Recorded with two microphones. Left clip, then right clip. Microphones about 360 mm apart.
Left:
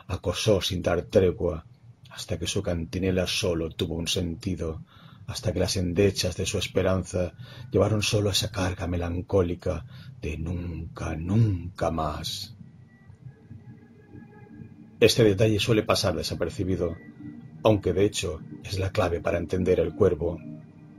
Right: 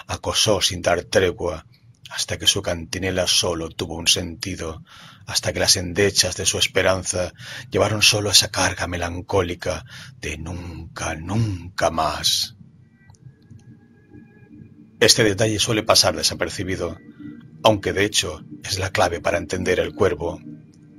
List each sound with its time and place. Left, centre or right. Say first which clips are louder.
0.0 s speech: right 7 dB; right
15.0 s speech: right 4 dB; right